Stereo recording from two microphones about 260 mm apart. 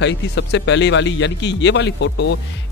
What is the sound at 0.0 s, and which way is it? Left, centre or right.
Speech, left.